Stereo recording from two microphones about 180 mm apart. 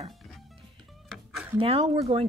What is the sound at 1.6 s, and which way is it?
Speech, 35° right (ahead or behind).